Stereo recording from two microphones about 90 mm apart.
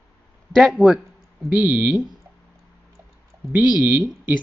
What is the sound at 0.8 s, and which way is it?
Speech, 15° right (ahead or behind).